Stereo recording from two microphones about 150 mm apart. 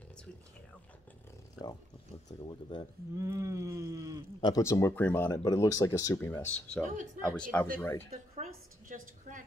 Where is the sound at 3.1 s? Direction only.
20° right (ahead or behind).